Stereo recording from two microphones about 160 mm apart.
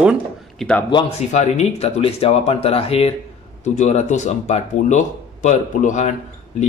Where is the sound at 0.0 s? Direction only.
5° right (ahead or behind).